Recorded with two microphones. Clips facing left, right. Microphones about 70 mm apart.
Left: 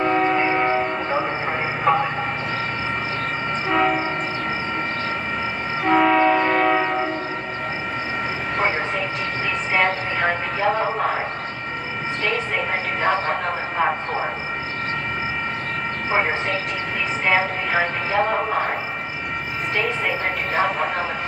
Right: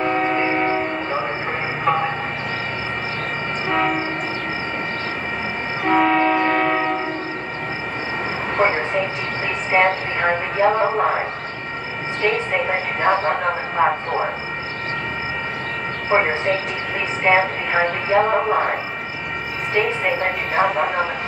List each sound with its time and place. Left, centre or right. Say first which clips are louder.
0.0 s train: left 1 dB; centre
1.9 s vehicle: left 1 dB; centre
3.6 s train: left 1 dB; centre
5.9 s train: even; centre
9.7 s speech: right 4 dB; centre
13.1 s speech: right 4 dB; centre
17.2 s speech: right 4 dB; centre
20.5 s speech: right 3 dB; centre